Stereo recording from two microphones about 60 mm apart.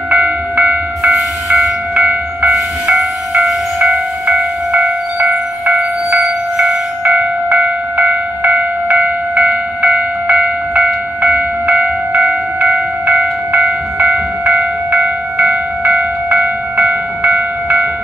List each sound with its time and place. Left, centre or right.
0.1 s train: right
2.0 s a sound: right
5.7 s train: centre
7.1 s train: right
14.5 s bell: right